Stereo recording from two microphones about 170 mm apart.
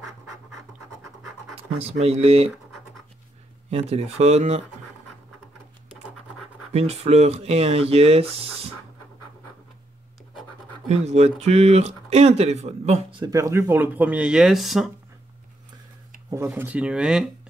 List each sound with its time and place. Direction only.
1.8 s speech: 35° right (ahead or behind)
3.7 s speech: 35° right (ahead or behind)
6.7 s speech: 40° right (ahead or behind)
10.9 s speech: 40° right (ahead or behind)
13.2 s speech: 20° right (ahead or behind); by 14.9 s centre (ahead or behind)
16.3 s speech: 15° right (ahead or behind)